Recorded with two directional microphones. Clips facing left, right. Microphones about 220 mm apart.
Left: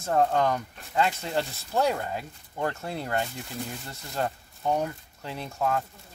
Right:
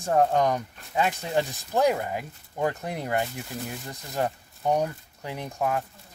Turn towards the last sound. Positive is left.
turn(degrees=-15)  # may be behind; listen again after turning